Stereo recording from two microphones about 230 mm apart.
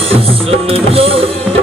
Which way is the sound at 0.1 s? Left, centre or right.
Right.